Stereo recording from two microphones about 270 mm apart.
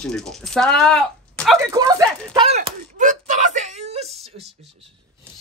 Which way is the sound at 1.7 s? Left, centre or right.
Centre.